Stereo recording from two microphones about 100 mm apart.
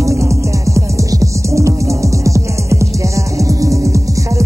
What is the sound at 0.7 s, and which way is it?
Music, 30° right (ahead or behind).